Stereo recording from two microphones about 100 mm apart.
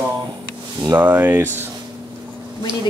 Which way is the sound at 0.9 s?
20° right (ahead or behind).